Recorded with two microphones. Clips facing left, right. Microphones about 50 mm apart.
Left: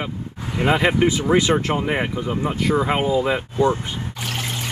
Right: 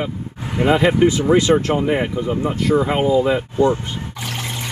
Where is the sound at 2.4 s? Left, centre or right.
Left.